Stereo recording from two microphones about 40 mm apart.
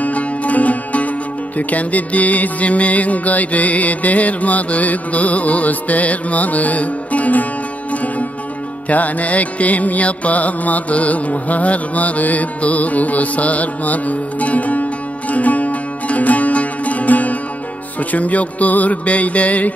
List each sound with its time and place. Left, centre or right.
0.0 s music: left